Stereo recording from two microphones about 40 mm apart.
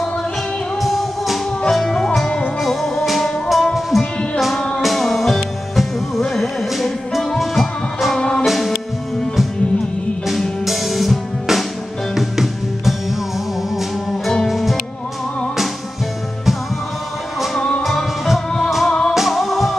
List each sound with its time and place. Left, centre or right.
0.7 s music: centre
8.2 s music: left
8.5 s music: centre
10.6 s music: centre
14.5 s music: centre
17.6 s music: centre
18.9 s music: centre
19.1 s music: centre